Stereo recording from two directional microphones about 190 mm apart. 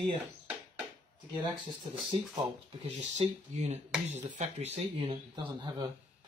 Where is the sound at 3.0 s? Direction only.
35° right (ahead or behind).